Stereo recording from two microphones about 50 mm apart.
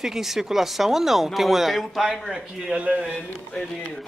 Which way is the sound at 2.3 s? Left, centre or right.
Right.